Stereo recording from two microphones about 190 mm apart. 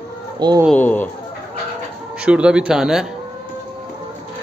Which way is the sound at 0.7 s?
10° left (ahead or behind).